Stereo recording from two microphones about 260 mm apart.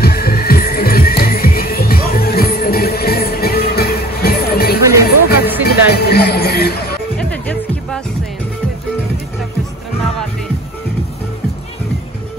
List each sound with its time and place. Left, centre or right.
0.0 s music: left
7.2 s music: centre